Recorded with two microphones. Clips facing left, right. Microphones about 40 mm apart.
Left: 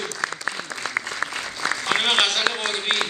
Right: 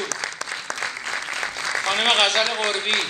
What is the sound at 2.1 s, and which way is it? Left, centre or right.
Speech, right.